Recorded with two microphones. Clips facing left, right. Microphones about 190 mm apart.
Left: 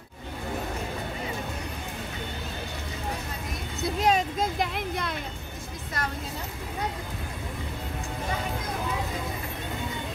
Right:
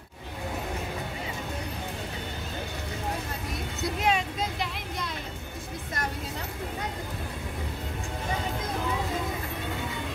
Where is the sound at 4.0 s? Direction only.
40° left (ahead or behind); by 5.2 s 55° left (ahead or behind).